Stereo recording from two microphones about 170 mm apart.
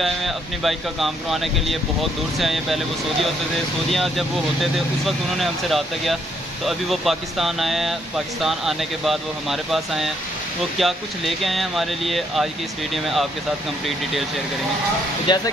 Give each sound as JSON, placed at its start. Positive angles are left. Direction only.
{"t": 0.0, "sound": "speech", "side_deg": 0}
{"t": 3.9, "sound": "speech", "side_deg": 0}
{"t": 15.2, "sound": "speech", "side_deg": 25}